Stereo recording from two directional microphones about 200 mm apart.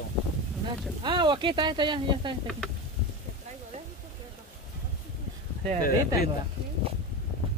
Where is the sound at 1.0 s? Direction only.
25° right (ahead or behind).